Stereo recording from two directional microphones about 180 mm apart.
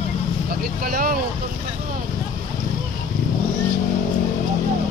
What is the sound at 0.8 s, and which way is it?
Vehicle, 50° right (ahead or behind).